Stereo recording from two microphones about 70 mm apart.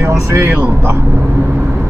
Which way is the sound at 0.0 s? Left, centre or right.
Right.